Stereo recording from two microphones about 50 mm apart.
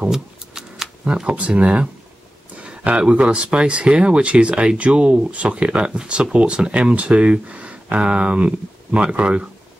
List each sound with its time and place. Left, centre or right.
0.1 s shuffling cards: centre
1.0 s speech: right
2.5 s a sound: right
3.0 s speech: right